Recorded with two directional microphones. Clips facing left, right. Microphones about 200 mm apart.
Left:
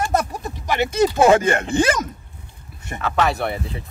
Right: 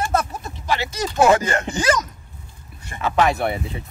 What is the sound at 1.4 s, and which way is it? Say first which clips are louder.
Speech: left 3 dB; 55° left (ahead or behind).